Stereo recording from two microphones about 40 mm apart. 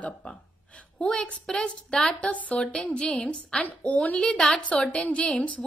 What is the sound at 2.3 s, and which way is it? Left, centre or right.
A woman's voice, left.